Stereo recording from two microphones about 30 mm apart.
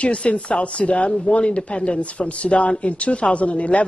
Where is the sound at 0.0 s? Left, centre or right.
Left.